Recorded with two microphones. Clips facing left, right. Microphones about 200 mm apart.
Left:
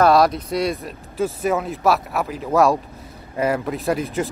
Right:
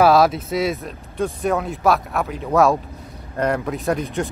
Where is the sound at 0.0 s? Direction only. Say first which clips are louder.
Right 1 dB; 5° right (ahead or behind).